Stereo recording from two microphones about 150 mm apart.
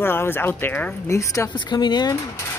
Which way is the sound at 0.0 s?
15° left (ahead or behind).